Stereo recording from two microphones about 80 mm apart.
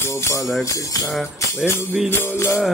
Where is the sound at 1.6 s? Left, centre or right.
Left.